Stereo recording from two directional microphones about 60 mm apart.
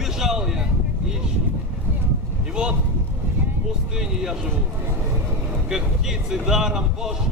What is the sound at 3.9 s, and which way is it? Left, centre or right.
Speech, centre.